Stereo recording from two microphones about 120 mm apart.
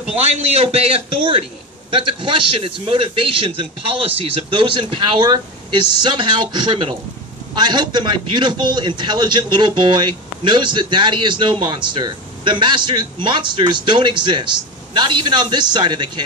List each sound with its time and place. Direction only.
0.4 s a man's voice: 60° right (ahead or behind); by 16.3 s 40° right (ahead or behind)